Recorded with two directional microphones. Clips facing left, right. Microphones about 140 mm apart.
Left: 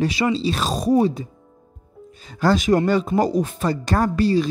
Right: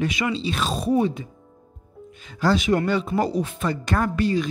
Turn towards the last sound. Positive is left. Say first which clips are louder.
# left 4 dB
turn(degrees=35)  # may be behind; listen again after turning